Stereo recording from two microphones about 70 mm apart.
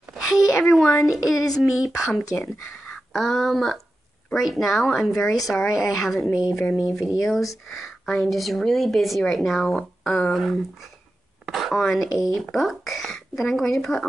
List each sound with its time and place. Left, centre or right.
0.3 s speech: left
1.0 s speech: centre
2.3 s speech: left
3.1 s speech: centre